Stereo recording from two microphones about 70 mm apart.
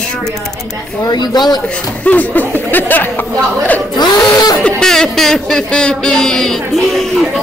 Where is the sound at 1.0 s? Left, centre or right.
Left.